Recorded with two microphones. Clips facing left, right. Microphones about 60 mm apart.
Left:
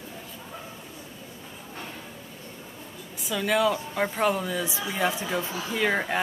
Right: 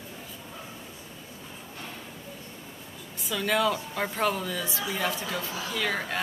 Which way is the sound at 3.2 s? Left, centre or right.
Centre.